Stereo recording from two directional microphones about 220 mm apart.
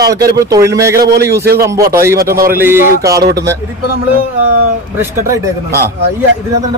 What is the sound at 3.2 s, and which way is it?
Speech, 45° right (ahead or behind).